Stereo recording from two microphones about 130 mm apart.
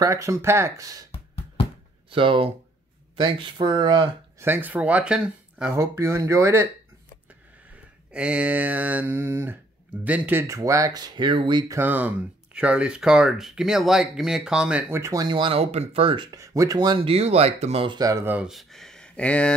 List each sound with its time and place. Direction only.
0.0 s speech: 25° right (ahead or behind)
1.1 s music: 45° left (ahead or behind)
2.0 s speech: 40° right (ahead or behind)
4.4 s speech: 15° right (ahead or behind)
5.7 s speech: 20° right (ahead or behind)
8.1 s speech: 10° right (ahead or behind); by 11.6 s 40° right (ahead or behind)
11.7 s speech: 15° right (ahead or behind)
15.0 s speech: 20° right (ahead or behind)
15.2 s speech: 40° right (ahead or behind)
16.3 s speech: 25° right (ahead or behind); by 17.8 s 55° right (ahead or behind)
17.8 s speech: 30° right (ahead or behind)
18.2 s speech: 15° right (ahead or behind)
18.5 s speech: centre (ahead or behind)